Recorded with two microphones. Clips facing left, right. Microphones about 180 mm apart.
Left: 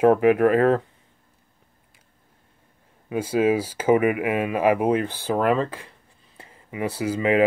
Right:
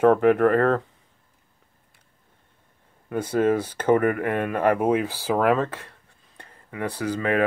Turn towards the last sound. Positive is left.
turn(degrees=10)  # may be behind; listen again after turning